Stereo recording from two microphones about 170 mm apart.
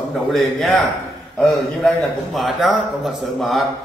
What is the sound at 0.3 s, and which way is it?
A man's voice, 5° left (ahead or behind).